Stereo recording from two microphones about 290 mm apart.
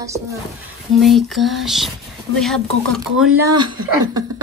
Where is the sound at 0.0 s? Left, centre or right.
Centre.